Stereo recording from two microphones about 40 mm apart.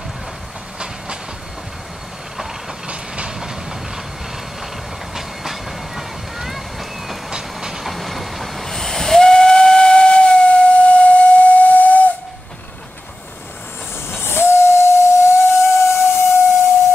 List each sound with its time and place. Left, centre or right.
3.3 s train: centre
5.1 s train: centre
7.2 s train: centre
7.8 s train: centre; by 12.1 s left
14.1 s steam whistle: left